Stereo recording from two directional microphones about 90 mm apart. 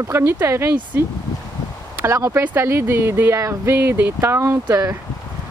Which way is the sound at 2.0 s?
35° right (ahead or behind).